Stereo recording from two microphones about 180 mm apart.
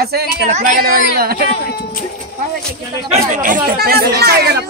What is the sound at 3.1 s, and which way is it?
Speech, 45° right (ahead or behind).